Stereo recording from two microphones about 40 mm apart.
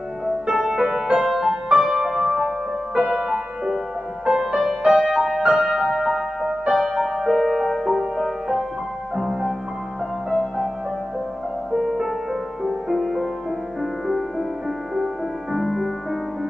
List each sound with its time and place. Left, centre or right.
0.5 s music: centre
11.7 s music: centre
15.5 s music: centre